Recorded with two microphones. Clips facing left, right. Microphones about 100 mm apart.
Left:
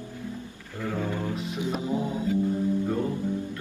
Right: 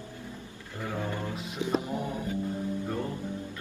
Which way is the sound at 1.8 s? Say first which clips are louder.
Left 5 dB; 20° left (ahead or behind).